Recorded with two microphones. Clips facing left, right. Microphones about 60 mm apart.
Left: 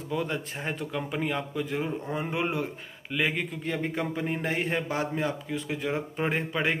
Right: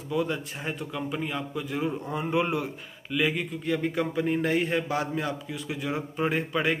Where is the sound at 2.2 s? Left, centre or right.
Centre.